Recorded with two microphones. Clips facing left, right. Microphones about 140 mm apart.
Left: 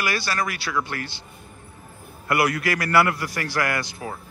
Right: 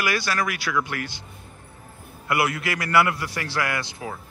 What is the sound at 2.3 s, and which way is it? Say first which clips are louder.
A man's voice: left 2 dB; 25° right (ahead or behind).